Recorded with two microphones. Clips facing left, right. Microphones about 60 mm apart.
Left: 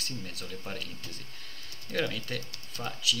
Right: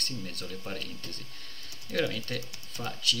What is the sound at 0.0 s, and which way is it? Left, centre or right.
Speech, centre.